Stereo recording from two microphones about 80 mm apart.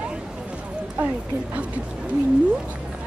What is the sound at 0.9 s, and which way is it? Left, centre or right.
Speech, centre.